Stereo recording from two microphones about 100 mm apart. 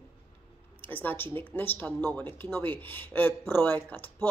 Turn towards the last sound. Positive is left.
turn(degrees=20)  # may be behind; listen again after turning